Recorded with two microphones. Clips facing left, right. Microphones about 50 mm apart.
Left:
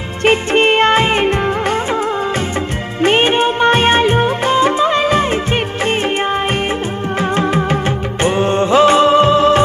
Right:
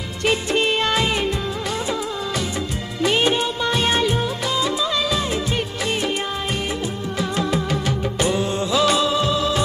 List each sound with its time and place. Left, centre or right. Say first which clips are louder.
0.2 s music of bollywood: left 8 dB; left
3.0 s music of bollywood: left 7 dB; left
7.2 s music: left 7 dB; left